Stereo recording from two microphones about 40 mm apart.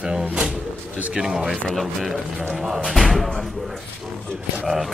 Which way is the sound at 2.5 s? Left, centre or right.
Centre.